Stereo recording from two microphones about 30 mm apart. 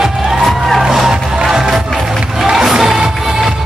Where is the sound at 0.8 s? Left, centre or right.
Centre.